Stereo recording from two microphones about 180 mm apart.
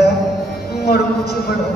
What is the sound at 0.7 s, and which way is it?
Music, 60° left (ahead or behind).